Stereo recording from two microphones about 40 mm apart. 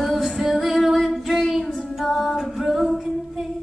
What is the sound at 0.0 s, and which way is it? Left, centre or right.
Female singing, centre.